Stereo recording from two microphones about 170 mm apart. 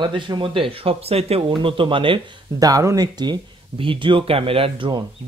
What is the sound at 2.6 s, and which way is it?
Speech, 20° right (ahead or behind).